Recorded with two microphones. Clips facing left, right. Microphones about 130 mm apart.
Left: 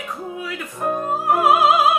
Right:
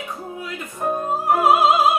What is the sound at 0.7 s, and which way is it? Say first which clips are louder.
Music: even; centre (ahead or behind).